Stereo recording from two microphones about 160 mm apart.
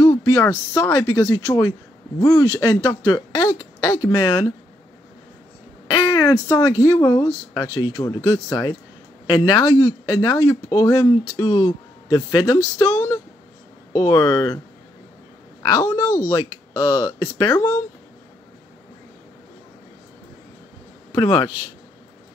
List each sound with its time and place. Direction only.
0.0 s speech: 15° left (ahead or behind)
5.9 s a sound: 25° left (ahead or behind)
6.8 s speech: 20° left (ahead or behind)
12.7 s a sound: 20° left (ahead or behind)
13.9 s speech: 25° left (ahead or behind)
15.6 s speech: 25° left (ahead or behind)
21.1 s speech: 25° left (ahead or behind)